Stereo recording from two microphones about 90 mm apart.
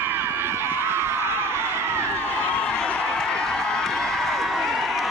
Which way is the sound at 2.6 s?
5° left (ahead or behind).